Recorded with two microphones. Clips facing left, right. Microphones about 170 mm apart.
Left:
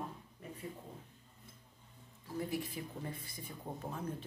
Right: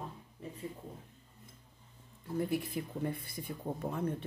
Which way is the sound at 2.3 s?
55° right (ahead or behind).